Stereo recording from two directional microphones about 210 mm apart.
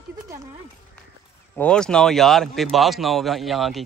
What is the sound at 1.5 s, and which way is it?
Speech, 5° left (ahead or behind).